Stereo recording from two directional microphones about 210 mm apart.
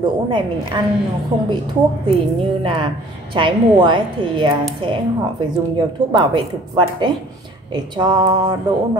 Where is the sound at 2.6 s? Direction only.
25° right (ahead or behind).